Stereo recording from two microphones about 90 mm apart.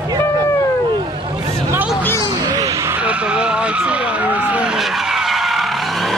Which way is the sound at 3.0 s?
15° right (ahead or behind).